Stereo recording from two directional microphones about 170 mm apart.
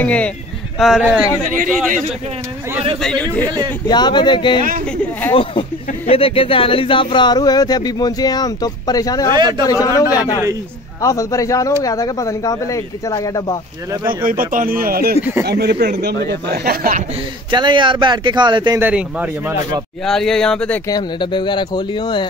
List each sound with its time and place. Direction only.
0.0 s speech: 5° left (ahead or behind)
1.4 s speech: 50° right (ahead or behind)
3.0 s speech: 5° left (ahead or behind)
3.4 s speech: 25° right (ahead or behind)
3.9 s speech: 25° left (ahead or behind)
14.2 s speech: 55° right (ahead or behind)
15.4 s speech: 75° right (ahead or behind)
17.5 s speech: 25° right (ahead or behind)
18.8 s speech: 10° right (ahead or behind)
20.9 s speech: 25° left (ahead or behind)